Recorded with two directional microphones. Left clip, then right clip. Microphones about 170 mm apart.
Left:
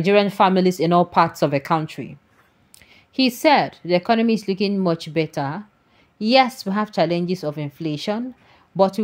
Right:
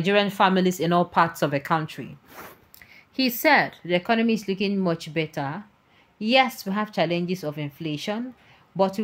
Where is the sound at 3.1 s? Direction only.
30° left (ahead or behind).